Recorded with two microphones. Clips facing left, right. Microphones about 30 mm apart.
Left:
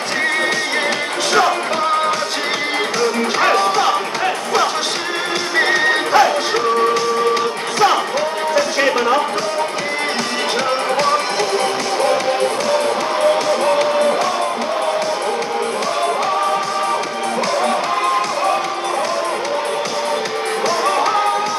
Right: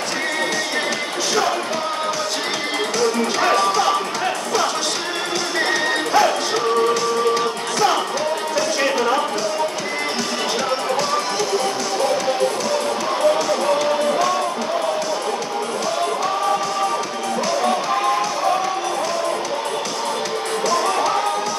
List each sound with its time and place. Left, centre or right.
3.0 s music: left
8.5 s a sound: left
13.7 s music: left
20.7 s music: left